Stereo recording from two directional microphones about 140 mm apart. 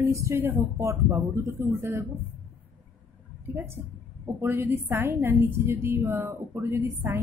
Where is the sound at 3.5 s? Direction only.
15° right (ahead or behind).